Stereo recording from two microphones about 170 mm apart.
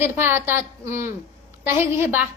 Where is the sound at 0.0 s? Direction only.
15° right (ahead or behind).